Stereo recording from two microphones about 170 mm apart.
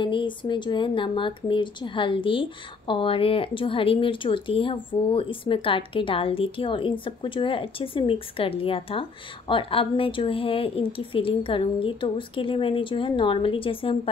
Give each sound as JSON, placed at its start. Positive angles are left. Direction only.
{"t": 0.0, "sound": "speech", "side_deg": 30}